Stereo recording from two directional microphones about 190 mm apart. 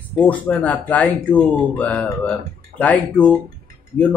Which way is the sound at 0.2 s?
10° left (ahead or behind).